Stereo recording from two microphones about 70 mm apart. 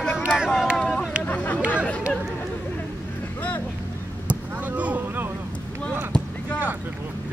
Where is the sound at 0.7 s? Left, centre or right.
Centre.